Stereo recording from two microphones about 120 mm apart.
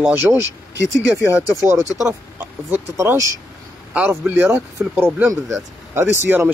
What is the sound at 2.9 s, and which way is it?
Speech, 25° right (ahead or behind).